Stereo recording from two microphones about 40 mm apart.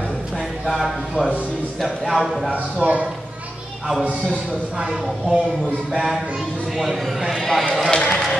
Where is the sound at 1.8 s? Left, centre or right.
Centre.